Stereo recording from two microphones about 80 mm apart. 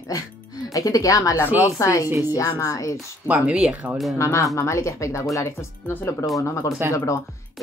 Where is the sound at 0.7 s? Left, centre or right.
Left.